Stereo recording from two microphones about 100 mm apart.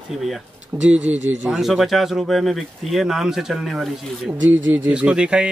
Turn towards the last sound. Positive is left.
turn(degrees=-10)  # may be behind; listen again after turning